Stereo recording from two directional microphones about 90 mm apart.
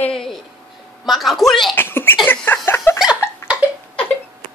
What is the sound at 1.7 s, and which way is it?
Speech, 25° left (ahead or behind).